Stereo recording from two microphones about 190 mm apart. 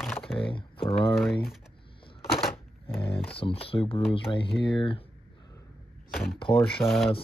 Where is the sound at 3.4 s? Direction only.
30° left (ahead or behind).